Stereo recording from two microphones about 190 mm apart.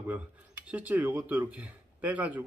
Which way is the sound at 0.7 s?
10° right (ahead or behind).